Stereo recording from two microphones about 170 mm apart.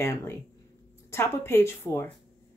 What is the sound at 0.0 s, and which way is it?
Speech, 15° left (ahead or behind).